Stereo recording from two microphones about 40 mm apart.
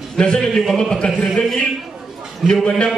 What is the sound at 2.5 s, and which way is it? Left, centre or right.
Speech, centre.